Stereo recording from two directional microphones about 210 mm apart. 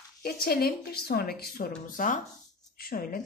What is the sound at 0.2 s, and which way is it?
A woman's voice, 45° left (ahead or behind).